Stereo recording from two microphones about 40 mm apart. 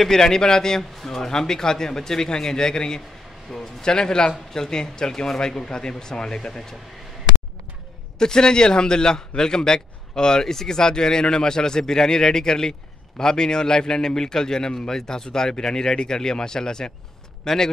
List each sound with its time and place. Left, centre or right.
0.0 s a man's voice: centre
8.2 s a man's voice: centre